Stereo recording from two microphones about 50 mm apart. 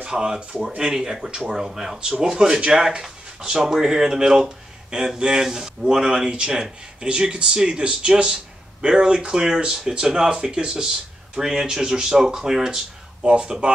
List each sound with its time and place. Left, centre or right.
0.0 s speech: centre